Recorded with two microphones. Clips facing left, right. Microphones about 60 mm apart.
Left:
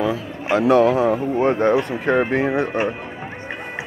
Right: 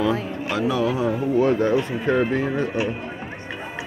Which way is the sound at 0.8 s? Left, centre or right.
Left.